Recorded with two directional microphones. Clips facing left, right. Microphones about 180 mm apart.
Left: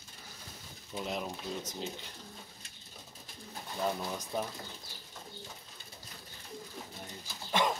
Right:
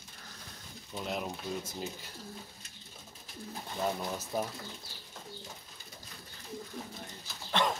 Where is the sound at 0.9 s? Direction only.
Centre (ahead or behind).